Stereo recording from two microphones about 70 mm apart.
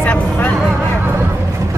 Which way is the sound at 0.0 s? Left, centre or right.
Left.